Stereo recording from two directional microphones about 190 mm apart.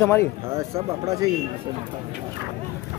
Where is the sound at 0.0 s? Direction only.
15° left (ahead or behind).